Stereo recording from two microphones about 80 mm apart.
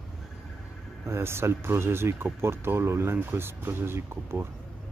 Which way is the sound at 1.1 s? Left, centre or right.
Right.